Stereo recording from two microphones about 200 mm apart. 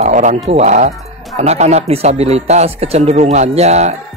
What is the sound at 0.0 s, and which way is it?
Speech, 40° right (ahead or behind).